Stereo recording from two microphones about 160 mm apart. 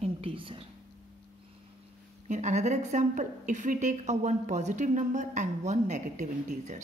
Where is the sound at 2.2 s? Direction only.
45° right (ahead or behind).